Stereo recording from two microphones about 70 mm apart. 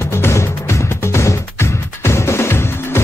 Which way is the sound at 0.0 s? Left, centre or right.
Left.